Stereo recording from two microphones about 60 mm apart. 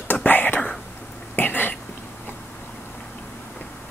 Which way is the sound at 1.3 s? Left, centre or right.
Left.